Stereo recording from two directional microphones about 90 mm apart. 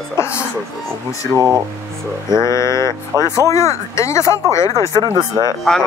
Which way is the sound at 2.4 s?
35° left (ahead or behind).